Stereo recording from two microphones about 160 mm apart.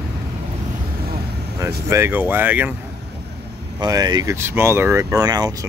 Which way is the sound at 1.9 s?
15° right (ahead or behind).